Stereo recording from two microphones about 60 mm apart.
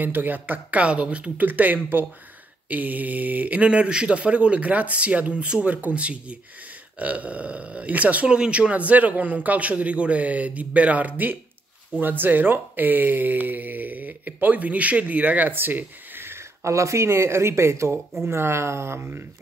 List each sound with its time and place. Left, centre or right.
0.0 s speech: right
1.4 s speech: right
16.2 s speech: right